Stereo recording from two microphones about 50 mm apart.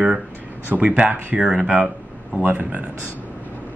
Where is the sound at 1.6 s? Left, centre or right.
Centre.